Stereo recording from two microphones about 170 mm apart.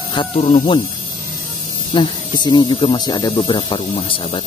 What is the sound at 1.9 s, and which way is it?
Speech, 25° left (ahead or behind).